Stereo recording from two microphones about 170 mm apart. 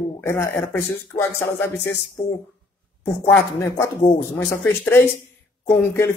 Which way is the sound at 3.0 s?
15° left (ahead or behind).